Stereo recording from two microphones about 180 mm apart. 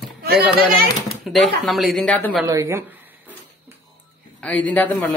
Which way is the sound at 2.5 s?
15° right (ahead or behind).